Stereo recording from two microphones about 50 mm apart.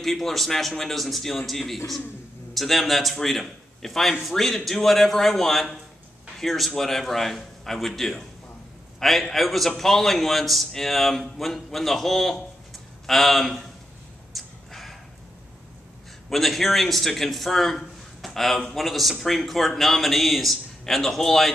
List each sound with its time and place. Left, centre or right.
0.0 s a man's voice: centre
14.3 s a sound: centre
16.3 s a man's voice: centre